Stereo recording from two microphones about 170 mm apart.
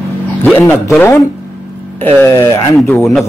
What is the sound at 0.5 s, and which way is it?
Speech, 15° left (ahead or behind).